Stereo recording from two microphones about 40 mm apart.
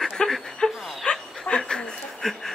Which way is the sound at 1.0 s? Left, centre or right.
Left.